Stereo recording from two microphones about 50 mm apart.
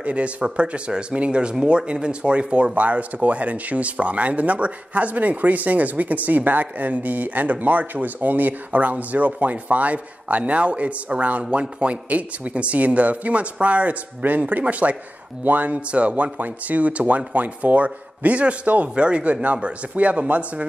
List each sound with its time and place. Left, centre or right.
0.0 s a man's voice: right